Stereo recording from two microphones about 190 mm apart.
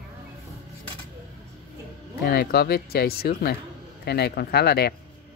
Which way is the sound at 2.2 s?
55° left (ahead or behind).